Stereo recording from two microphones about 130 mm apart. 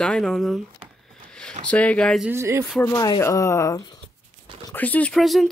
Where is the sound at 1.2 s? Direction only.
5° left (ahead or behind).